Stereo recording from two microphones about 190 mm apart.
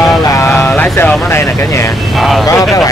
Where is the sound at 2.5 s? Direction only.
20° left (ahead or behind).